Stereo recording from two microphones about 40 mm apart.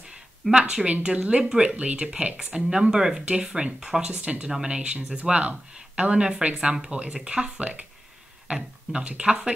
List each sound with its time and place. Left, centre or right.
0.5 s speech: right
1.0 s speech: right
1.4 s speech: right
4.0 s speech: right